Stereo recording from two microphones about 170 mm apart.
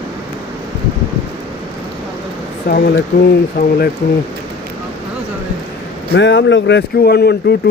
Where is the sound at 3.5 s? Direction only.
60° left (ahead or behind).